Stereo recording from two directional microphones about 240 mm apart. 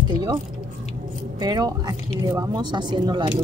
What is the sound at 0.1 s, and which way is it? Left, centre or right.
Speech, centre.